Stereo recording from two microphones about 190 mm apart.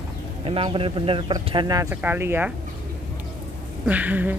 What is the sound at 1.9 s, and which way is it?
Speech, 10° right (ahead or behind).